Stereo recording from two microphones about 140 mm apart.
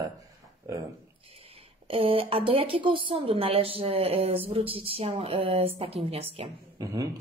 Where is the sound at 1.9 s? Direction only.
40° right (ahead or behind).